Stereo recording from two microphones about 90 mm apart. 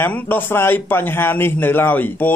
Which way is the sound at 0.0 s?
25° left (ahead or behind).